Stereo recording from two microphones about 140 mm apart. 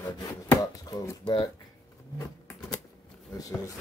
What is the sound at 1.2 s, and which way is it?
Speech, 35° left (ahead or behind).